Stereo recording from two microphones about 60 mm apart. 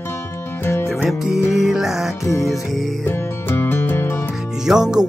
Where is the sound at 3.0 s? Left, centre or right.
Left.